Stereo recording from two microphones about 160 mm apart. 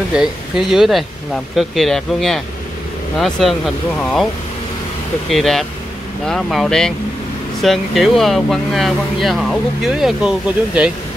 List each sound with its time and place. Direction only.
0.1 s speech: 5° right (ahead or behind)
5.3 s speech: centre (ahead or behind)